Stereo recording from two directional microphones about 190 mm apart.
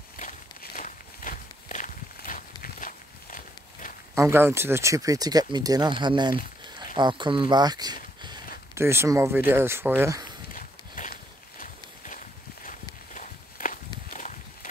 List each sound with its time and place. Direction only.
0.2 s walk: 45° left (ahead or behind)
4.1 s speech: 15° right (ahead or behind)
10.5 s horse: 45° left (ahead or behind)
13.1 s walk: 45° left (ahead or behind)